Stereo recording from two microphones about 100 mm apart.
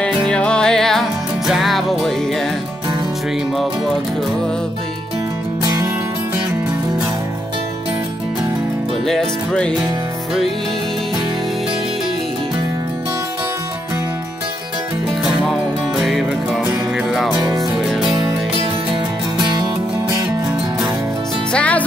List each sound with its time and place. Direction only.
0.3 s music: 10° left (ahead or behind)
9.0 s music: 5° left (ahead or behind)
16.0 s music: centre (ahead or behind)
17.3 s music: 35° right (ahead or behind)
19.3 s music: 45° right (ahead or behind)
21.5 s music: 15° left (ahead or behind)